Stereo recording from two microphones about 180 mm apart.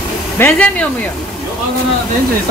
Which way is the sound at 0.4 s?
5° left (ahead or behind).